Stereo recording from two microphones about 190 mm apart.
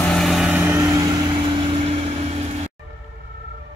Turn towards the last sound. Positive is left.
turn(degrees=-35)  # may be behind; listen again after turning